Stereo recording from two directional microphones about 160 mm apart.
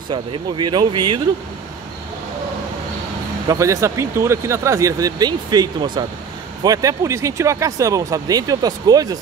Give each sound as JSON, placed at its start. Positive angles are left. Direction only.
{"t": 0.1, "sound": "speech", "side_deg": -30}
{"t": 3.4, "sound": "speech", "side_deg": -20}